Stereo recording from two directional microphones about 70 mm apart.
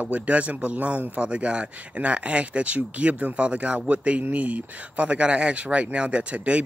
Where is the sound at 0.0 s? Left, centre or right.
Right.